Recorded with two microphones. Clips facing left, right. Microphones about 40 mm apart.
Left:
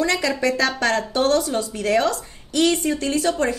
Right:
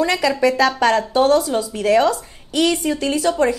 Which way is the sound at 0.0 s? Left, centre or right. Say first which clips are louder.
Right 3 dB; centre.